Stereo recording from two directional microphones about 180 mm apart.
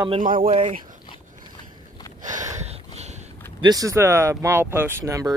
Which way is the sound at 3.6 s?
20° right (ahead or behind).